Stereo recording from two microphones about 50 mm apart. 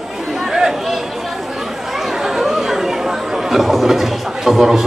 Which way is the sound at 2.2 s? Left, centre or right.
Centre.